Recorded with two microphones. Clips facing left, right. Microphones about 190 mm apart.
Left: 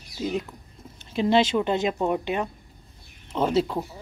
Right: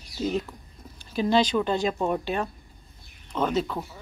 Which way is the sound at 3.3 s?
25° left (ahead or behind).